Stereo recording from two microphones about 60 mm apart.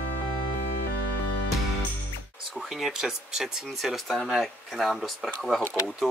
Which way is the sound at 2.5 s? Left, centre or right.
Centre.